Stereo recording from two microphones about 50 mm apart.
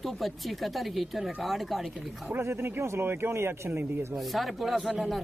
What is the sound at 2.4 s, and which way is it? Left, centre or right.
Speech, right.